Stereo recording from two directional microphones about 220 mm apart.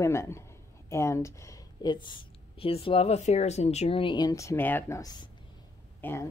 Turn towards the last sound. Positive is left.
turn(degrees=10)  # may be behind; listen again after turning